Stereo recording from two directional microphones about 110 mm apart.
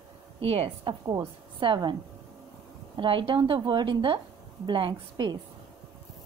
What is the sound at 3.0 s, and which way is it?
Speech, 50° right (ahead or behind).